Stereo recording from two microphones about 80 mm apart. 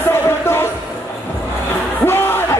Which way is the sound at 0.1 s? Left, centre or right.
Left.